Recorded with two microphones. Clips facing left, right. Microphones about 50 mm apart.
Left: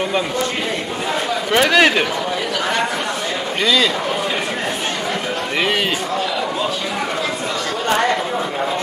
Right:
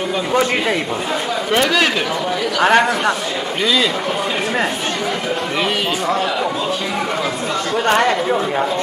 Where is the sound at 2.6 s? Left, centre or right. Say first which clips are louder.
Right 10 dB; right.